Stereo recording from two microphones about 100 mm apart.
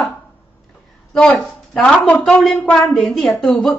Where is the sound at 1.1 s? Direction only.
5° left (ahead or behind).